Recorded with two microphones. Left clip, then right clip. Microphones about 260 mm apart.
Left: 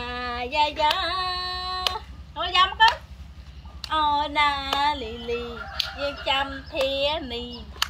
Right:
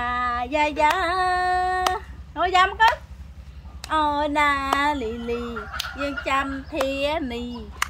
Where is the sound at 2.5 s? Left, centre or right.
Right.